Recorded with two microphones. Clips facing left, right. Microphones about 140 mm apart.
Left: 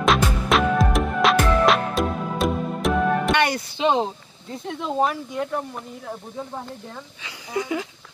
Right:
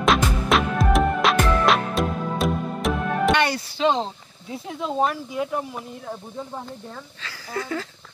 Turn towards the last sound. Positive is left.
turn(degrees=15)  # may be behind; listen again after turning